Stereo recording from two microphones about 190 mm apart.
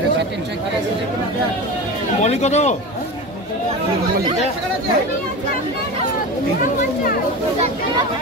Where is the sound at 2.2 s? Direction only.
35° left (ahead or behind).